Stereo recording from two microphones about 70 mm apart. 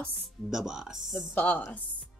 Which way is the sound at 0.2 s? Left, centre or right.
Centre.